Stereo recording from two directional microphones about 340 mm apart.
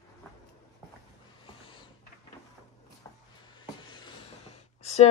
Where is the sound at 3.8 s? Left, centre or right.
Centre.